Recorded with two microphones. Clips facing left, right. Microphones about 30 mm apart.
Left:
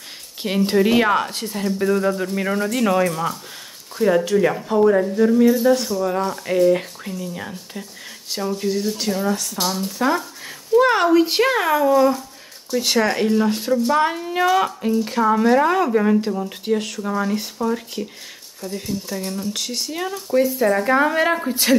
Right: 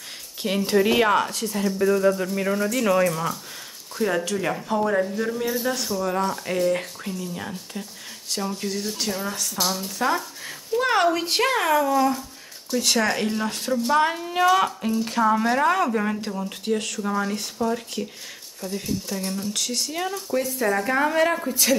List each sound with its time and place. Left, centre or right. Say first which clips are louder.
0.4 s speech: left 3 dB; centre
20.2 s speech: left 10 dB; centre
20.5 s speech: left 5 dB; centre; by 21.7 s left